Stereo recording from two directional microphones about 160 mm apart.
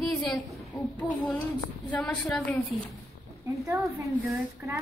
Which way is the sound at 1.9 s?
5° left (ahead or behind).